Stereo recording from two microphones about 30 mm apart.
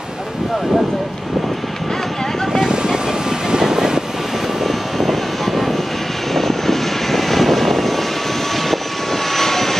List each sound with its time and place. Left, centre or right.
2.7 s vehicle: right
4.6 s vehicle: centre